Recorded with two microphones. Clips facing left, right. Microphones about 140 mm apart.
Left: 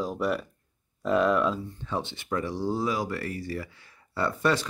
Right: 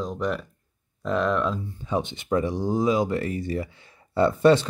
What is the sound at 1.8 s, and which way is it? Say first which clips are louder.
Speech: right 5 dB; 15° right (ahead or behind).